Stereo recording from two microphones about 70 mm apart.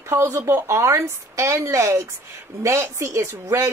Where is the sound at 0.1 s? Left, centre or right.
Right.